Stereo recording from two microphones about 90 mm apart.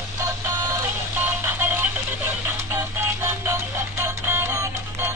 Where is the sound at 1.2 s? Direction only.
20° right (ahead or behind).